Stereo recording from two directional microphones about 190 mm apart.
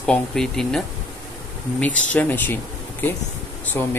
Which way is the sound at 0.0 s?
5° left (ahead or behind).